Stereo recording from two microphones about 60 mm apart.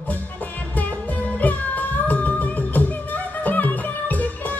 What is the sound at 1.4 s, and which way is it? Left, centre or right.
Music, left.